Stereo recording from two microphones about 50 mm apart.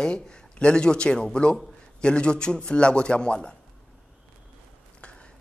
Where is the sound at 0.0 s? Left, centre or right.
Centre.